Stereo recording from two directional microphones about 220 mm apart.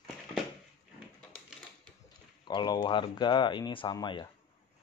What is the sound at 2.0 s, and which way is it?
Speech, 20° left (ahead or behind).